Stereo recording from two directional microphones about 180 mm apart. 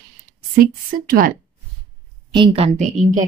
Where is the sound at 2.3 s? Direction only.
30° right (ahead or behind).